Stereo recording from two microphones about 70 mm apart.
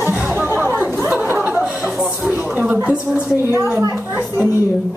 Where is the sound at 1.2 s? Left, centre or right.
Right.